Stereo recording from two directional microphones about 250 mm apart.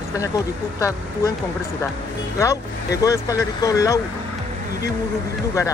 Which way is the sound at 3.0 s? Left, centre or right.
Centre.